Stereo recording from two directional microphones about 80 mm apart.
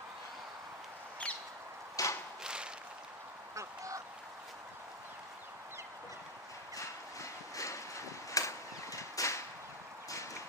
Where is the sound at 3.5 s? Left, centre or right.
Right.